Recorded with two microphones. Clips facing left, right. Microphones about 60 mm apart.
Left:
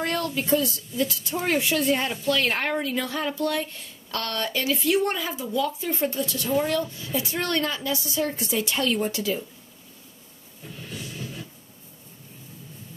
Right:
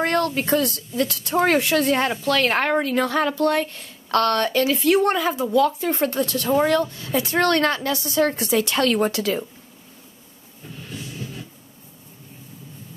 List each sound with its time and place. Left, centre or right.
0.0 s a woman's voice: right
3.4 s a woman's voice: right
10.9 s a sound: centre